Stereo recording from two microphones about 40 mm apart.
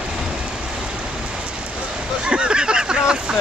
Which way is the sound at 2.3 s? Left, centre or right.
Right.